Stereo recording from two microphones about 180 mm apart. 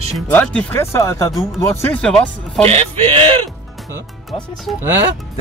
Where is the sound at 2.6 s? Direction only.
30° right (ahead or behind).